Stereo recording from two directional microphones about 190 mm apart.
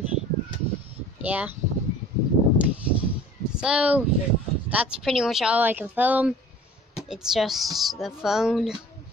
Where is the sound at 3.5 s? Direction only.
5° right (ahead or behind).